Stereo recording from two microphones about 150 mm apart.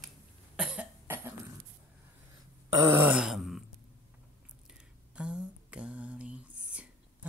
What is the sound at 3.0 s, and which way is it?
Throat clearing, 5° right (ahead or behind).